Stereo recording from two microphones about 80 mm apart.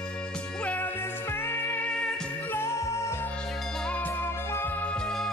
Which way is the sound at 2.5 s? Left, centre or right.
Left.